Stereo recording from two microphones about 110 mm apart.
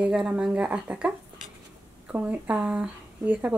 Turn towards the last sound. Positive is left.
turn(degrees=-15)  # may be behind; listen again after turning